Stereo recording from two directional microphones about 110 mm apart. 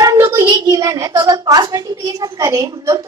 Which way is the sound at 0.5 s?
35° right (ahead or behind).